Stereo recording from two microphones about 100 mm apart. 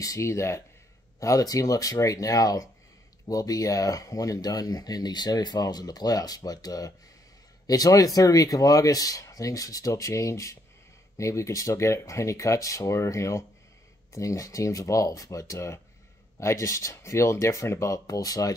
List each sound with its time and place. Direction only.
0.0 s speech: 30° left (ahead or behind)